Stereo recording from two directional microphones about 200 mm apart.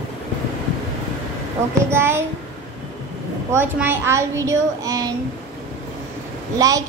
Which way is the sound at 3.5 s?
10° right (ahead or behind).